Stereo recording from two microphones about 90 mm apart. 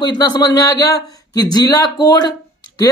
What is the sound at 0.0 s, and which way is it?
Speech, 50° left (ahead or behind).